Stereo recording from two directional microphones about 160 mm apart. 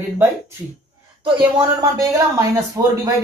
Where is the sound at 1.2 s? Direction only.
25° right (ahead or behind).